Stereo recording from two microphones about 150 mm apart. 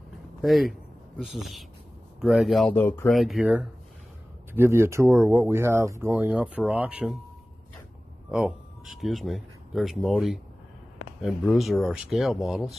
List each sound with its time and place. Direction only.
0.4 s speech: centre (ahead or behind)
2.7 s speech: 15° left (ahead or behind)
3.1 s speech: centre (ahead or behind)
4.6 s speech: 15° right (ahead or behind)
8.3 s speech: 5° right (ahead or behind)